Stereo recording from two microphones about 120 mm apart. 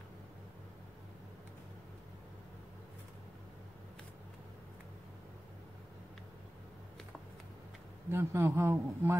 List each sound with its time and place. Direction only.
8.1 s a man's voice: 20° right (ahead or behind)